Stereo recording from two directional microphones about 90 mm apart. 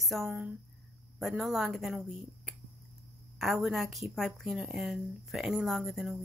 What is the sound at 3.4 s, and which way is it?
Speech, 5° right (ahead or behind).